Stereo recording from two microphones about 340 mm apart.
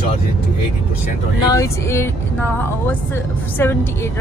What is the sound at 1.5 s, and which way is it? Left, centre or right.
Speech, centre.